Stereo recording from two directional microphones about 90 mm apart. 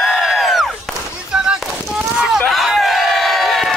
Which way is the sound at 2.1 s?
10° right (ahead or behind).